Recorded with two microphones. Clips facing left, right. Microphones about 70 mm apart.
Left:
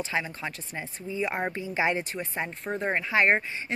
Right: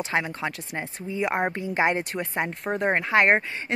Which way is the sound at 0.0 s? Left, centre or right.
Right.